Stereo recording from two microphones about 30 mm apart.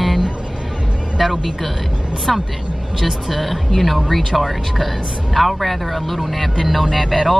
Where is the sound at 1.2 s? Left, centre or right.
Centre.